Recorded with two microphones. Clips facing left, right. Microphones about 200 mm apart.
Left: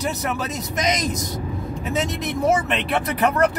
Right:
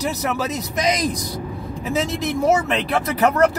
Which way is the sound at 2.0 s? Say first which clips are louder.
Right 2 dB; centre (ahead or behind).